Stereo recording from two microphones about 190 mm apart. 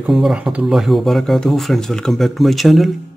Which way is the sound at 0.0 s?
Centre (ahead or behind).